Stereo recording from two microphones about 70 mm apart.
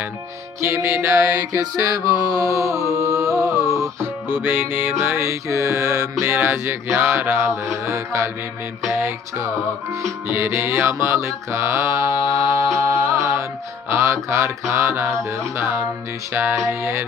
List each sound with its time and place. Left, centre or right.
0.6 s music: right
4.3 s music: right
5.2 s music: right